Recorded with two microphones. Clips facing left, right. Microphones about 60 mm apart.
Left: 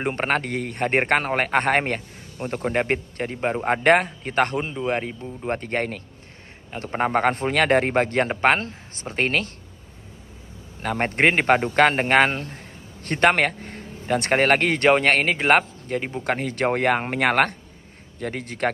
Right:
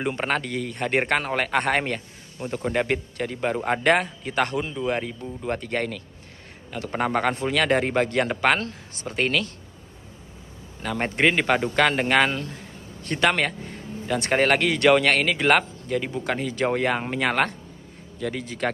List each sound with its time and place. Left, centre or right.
0.0 s a man's voice: left
10.8 s a man's voice: left
16.3 s speech: left